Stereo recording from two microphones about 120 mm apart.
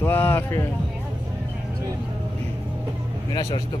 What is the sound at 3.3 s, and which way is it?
Speech, 35° left (ahead or behind).